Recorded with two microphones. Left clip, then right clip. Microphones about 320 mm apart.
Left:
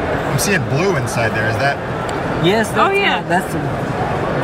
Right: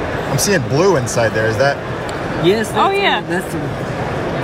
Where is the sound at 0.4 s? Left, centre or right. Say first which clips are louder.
Right 6 dB; centre.